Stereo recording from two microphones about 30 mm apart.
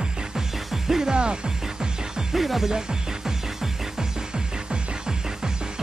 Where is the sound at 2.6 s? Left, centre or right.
Centre.